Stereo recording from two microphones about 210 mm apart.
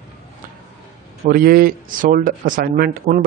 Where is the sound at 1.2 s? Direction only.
45° right (ahead or behind).